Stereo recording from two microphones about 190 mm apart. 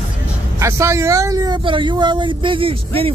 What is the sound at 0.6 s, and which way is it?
Speech, 15° right (ahead or behind).